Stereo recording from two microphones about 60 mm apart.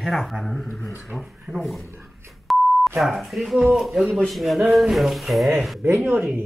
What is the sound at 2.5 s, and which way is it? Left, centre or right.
Beep, centre.